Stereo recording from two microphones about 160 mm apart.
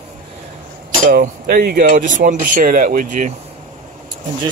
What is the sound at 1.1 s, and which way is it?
Speech, 70° right (ahead or behind).